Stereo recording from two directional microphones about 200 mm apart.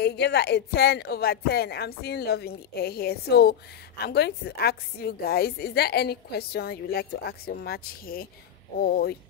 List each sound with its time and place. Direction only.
0.0 s speech: 55° left (ahead or behind)